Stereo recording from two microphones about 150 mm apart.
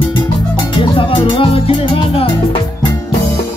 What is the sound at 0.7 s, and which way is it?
Music, 35° left (ahead or behind).